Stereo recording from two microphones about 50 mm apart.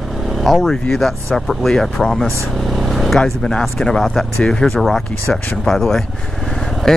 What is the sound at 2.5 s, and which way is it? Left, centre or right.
Vehicle, centre.